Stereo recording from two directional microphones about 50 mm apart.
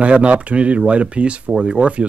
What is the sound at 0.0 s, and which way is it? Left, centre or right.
Speech, right.